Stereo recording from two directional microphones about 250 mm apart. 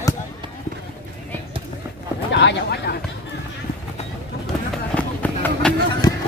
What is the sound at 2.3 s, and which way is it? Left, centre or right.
Speech, left.